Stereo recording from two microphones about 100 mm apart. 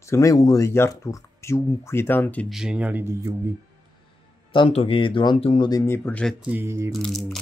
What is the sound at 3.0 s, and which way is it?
Speech, 30° right (ahead or behind).